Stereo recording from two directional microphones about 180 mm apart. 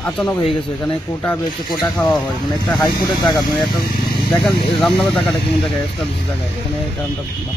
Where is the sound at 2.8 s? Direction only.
20° left (ahead or behind).